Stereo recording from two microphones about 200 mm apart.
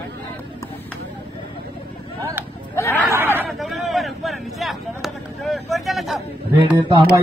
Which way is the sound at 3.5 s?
Centre (ahead or behind).